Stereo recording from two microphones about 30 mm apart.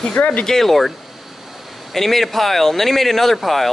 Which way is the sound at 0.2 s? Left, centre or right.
Left.